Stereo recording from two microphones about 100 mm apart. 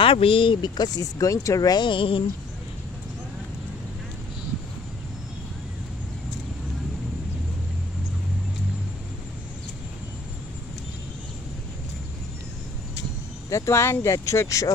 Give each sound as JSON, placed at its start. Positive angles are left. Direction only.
{"t": 0.0, "sound": "speech", "side_deg": 65}
{"t": 13.5, "sound": "speech", "side_deg": 30}